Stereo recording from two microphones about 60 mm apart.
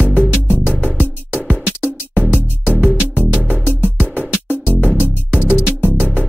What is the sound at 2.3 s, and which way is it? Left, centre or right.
Music, right.